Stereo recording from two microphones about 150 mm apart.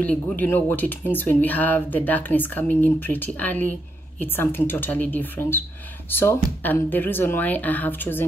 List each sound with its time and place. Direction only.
0.0 s speech: 10° left (ahead or behind)